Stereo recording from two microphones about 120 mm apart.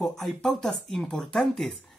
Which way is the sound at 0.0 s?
Centre (ahead or behind).